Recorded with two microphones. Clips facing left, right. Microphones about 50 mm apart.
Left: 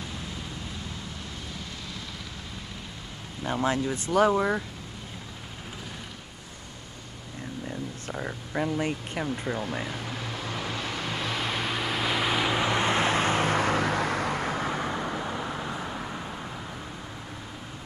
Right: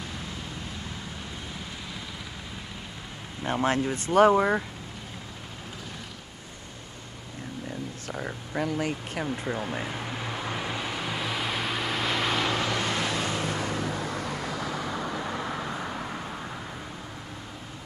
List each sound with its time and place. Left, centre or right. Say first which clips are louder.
3.6 s speech: right 1 dB; right
4.3 s speech: right 3 dB; right
8.1 s a sound: even; centre
8.6 s vehicle: even; centre; by 14.9 s left
14.9 s vehicle: left 1 dB; centre
15.3 s vehicle: right 1 dB; centre